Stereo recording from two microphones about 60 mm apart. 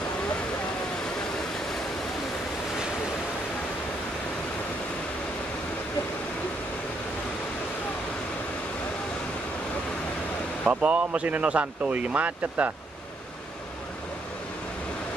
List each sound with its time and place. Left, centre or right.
10.6 s speech: right